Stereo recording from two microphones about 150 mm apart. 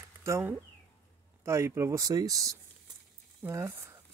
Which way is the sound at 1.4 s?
20° right (ahead or behind).